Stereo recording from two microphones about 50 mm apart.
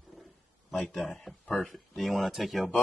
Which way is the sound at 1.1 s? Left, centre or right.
Centre.